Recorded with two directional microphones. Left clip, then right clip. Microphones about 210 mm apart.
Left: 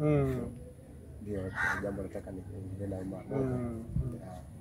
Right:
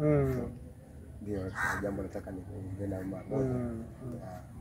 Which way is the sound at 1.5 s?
50° right (ahead or behind).